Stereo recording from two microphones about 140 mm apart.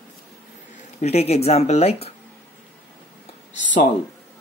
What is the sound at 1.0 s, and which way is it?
Speech, 50° left (ahead or behind).